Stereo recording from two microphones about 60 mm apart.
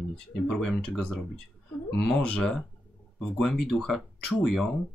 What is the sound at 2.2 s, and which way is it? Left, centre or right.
Speech, centre.